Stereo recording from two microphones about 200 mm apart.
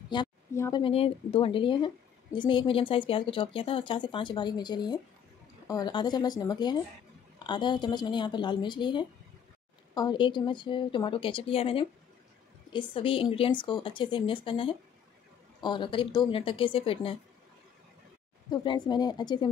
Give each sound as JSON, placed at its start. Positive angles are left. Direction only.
{"t": 0.1, "sound": "speech", "side_deg": 20}
{"t": 18.5, "sound": "speech", "side_deg": 25}